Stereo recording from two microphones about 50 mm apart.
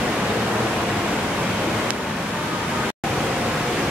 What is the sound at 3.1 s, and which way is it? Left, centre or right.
Pink noise, centre.